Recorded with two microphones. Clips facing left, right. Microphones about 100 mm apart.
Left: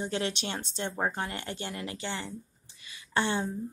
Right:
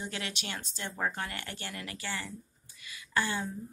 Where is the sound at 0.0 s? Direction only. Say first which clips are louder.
Left 7 dB; 30° left (ahead or behind).